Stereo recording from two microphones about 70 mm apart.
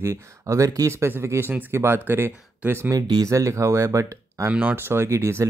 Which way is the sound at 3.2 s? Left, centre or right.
Right.